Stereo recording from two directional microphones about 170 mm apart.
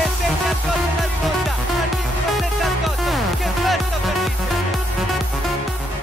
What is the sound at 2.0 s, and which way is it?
Music, centre (ahead or behind).